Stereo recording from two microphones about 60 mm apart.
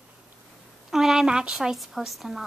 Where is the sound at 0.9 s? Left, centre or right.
Centre.